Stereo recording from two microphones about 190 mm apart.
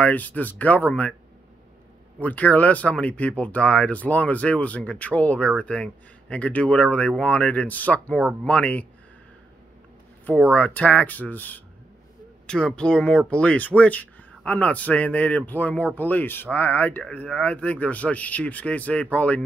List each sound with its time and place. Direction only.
0.0 s speech: 10° left (ahead or behind)
2.2 s speech: 10° left (ahead or behind)
10.5 s speech: 5° left (ahead or behind)